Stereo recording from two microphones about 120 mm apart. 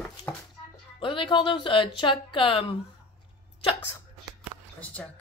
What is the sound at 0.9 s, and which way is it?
Speech, 45° left (ahead or behind).